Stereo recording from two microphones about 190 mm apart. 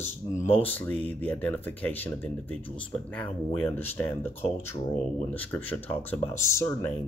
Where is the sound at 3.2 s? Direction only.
10° left (ahead or behind).